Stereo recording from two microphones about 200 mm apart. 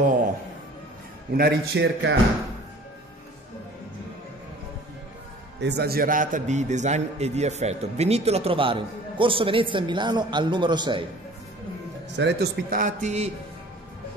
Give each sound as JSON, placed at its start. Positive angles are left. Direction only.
{"t": 1.3, "sound": "a man's voice", "side_deg": -55}
{"t": 5.6, "sound": "a man's voice", "side_deg": -55}
{"t": 12.2, "sound": "a man's voice", "side_deg": -60}
{"t": 12.6, "sound": "a man's voice", "side_deg": -45}